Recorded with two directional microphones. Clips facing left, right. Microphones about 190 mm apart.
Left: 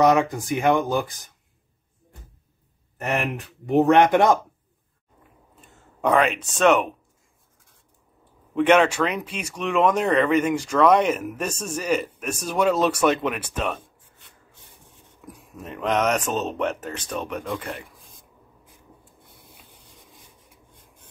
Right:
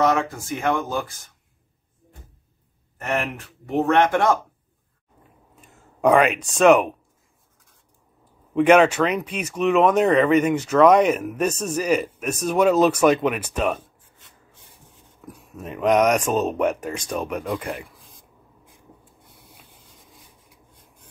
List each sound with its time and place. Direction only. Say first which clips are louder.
0.0 s speech: left 3 dB; 15° left (ahead or behind)
3.0 s speech: even; 20° left (ahead or behind)
5.9 s speech: right 3 dB; 10° right (ahead or behind)
8.5 s speech: right 3 dB; 5° right (ahead or behind)
15.3 s speech: right 3 dB; centre (ahead or behind)